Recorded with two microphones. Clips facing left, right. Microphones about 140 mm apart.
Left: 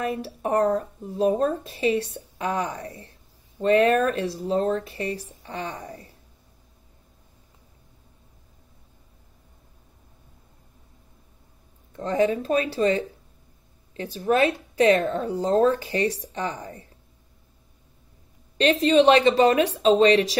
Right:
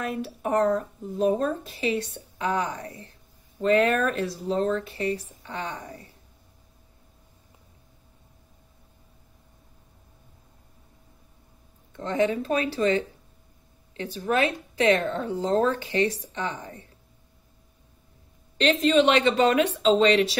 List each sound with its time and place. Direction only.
0.0 s speech: 35° left (ahead or behind)
11.9 s speech: 35° left (ahead or behind)
18.6 s speech: 35° left (ahead or behind)